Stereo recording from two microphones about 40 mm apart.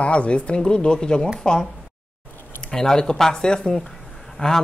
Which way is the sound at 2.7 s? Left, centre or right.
Centre.